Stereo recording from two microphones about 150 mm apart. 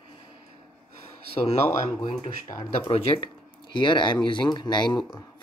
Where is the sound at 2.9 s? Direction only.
35° left (ahead or behind).